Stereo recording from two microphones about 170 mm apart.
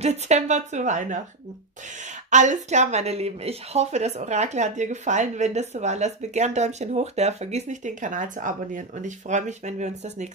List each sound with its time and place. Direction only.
0.0 s speech: 40° right (ahead or behind)
2.3 s speech: 45° right (ahead or behind)